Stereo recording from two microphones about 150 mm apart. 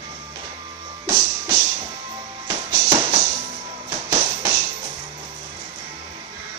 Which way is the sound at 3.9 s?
15° right (ahead or behind).